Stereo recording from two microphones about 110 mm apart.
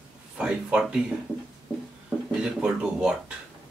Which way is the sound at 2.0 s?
5° right (ahead or behind).